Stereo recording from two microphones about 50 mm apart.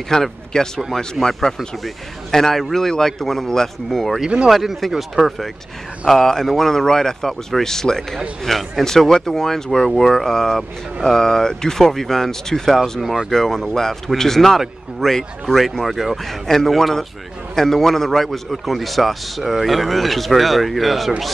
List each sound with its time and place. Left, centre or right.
0.1 s a man's voice: centre
13.0 s speech: centre
13.3 s a man's voice: centre